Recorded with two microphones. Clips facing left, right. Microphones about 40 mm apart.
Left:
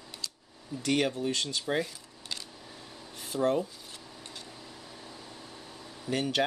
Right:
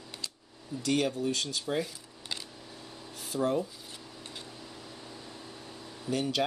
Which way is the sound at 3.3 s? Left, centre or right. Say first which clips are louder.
Left 2 dB; left.